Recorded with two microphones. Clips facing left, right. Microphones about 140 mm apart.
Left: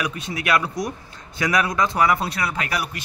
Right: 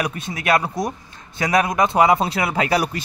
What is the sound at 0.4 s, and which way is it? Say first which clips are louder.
Speech: right 3 dB; 30° right (ahead or behind).